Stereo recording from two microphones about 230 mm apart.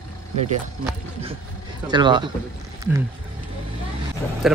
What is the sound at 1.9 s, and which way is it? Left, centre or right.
Speech, centre.